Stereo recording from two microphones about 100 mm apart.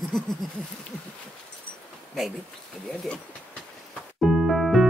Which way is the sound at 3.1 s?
10° left (ahead or behind).